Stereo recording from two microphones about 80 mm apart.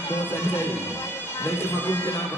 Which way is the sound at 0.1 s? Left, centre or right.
Left.